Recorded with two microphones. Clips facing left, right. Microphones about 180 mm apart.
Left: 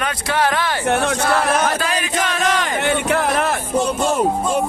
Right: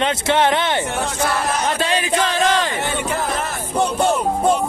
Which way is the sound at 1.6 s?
25° right (ahead or behind).